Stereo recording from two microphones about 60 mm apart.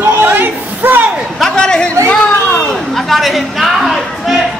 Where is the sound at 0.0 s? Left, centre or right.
Right.